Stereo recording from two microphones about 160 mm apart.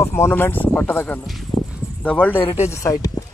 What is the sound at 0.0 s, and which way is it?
Speech, 15° left (ahead or behind).